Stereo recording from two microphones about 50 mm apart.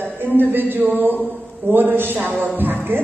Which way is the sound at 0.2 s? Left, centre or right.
Right.